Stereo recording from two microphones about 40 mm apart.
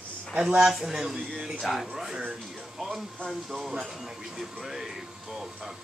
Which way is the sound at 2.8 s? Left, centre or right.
Centre.